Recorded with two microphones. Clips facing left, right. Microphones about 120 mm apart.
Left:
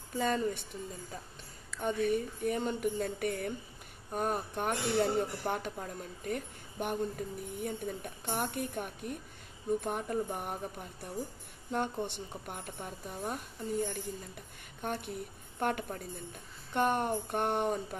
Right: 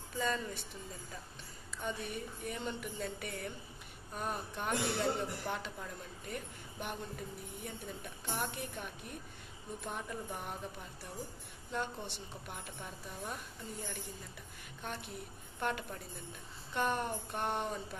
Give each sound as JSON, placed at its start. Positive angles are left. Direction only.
{"t": 0.2, "sound": "a woman's voice", "side_deg": 45}
{"t": 1.8, "sound": "a woman's voice", "side_deg": 50}